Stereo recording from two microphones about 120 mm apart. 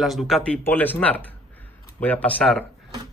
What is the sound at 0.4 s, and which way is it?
Speech, 10° left (ahead or behind).